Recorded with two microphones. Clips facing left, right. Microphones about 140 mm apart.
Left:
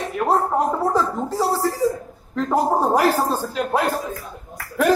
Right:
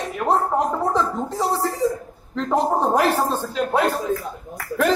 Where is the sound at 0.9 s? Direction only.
5° left (ahead or behind).